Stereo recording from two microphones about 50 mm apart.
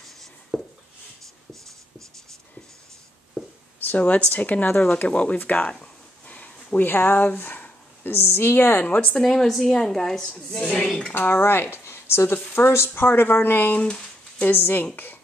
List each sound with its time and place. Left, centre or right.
0.0 s a sound: centre
3.8 s a woman's voice: left
5.7 s a sound: left
6.8 s speech: left
8.8 s a woman's voice: left
9.1 s a woman's voice: centre
10.6 s speech: left
11.1 s speech: left
11.8 s a sound: left
12.5 s speech: left
13.7 s speech: centre
14.4 s speech: left